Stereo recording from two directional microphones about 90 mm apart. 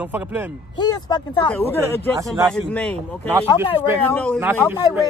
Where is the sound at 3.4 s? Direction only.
80° left.